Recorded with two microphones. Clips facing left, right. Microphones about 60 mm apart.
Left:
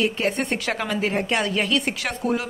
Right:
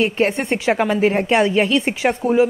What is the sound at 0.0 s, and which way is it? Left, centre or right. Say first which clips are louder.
A woman's voice: right 5 dB; right.